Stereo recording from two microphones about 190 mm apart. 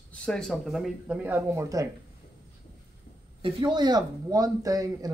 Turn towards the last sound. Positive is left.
turn(degrees=-20)  # may be behind; listen again after turning